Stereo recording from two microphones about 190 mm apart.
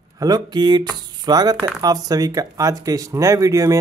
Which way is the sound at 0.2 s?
20° right (ahead or behind).